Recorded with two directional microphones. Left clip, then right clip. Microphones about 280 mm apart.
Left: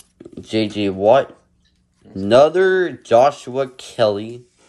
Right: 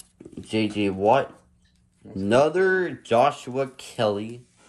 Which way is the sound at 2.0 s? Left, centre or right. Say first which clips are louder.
Left 4 dB; centre.